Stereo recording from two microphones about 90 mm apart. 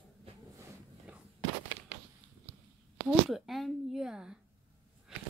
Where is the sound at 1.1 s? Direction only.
15° right (ahead or behind).